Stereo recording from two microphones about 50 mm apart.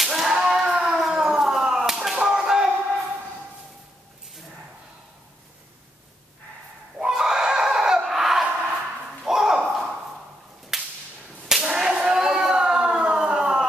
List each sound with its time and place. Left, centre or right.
0.0 s a sound: centre
0.3 s a sound: centre
1.1 s whip: centre
2.2 s slap: centre
7.0 s chicken: centre
8.0 s laughter: centre
8.7 s thump: centre
9.7 s a sound: centre
10.7 s whip: centre
11.4 s cat: centre